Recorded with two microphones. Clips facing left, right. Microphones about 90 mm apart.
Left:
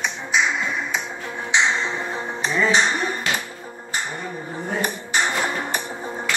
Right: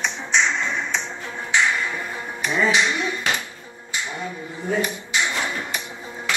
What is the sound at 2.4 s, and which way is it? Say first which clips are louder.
Music: left 1 dB; 35° left (ahead or behind).